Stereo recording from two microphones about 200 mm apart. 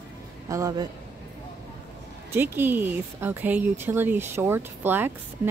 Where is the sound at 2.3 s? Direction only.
10° right (ahead or behind).